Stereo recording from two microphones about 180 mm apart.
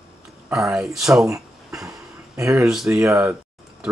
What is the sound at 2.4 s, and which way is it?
Speech, 15° right (ahead or behind).